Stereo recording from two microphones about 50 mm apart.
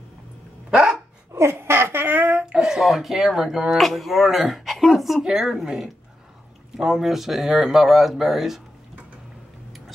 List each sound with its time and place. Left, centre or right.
0.7 s dog: centre
1.3 s speech: right
2.5 s speech: centre
2.8 s speech: centre